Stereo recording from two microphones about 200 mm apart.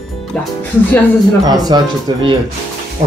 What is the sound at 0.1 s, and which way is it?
Music, centre (ahead or behind).